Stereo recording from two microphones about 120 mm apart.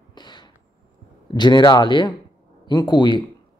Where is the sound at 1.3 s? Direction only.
40° left (ahead or behind).